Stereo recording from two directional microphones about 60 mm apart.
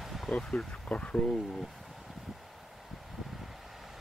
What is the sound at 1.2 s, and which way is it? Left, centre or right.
Speech, centre.